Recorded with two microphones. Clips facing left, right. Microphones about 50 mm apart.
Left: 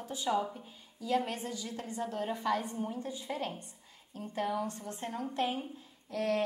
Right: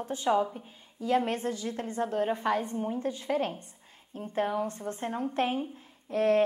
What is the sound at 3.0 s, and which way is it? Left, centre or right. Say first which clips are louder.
A woman's voice: right 8 dB; right.